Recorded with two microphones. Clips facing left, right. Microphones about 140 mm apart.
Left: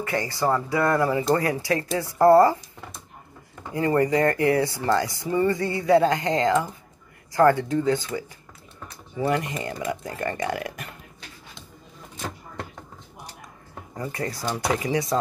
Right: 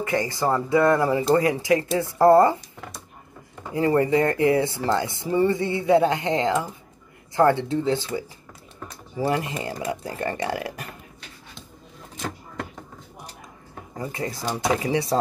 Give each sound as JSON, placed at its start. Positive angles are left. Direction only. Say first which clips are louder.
{"t": 0.0, "sound": "speech", "louder": "right 1 dB", "side_deg": -20}
{"t": 3.7, "sound": "speech", "louder": "right 1 dB", "side_deg": -25}
{"t": 13.9, "sound": "speech", "louder": "even", "side_deg": -25}